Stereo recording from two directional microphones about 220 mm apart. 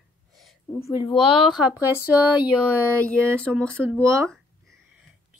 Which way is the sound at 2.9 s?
5° left (ahead or behind).